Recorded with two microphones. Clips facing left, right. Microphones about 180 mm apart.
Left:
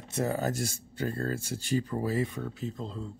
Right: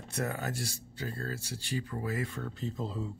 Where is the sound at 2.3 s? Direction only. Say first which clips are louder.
Left 2 dB; 10° left (ahead or behind).